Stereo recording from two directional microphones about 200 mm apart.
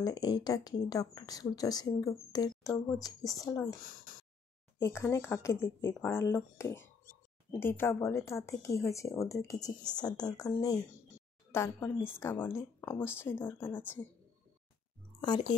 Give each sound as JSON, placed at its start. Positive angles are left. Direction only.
{"t": 0.0, "sound": "speech", "side_deg": 20}
{"t": 3.8, "sound": "speech", "side_deg": 45}
{"t": 4.7, "sound": "speech", "side_deg": 10}
{"t": 15.1, "sound": "speech", "side_deg": 20}